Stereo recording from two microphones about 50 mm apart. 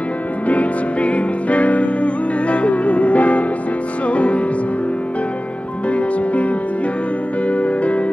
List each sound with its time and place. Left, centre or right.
0.5 s music: left
5.9 s music: left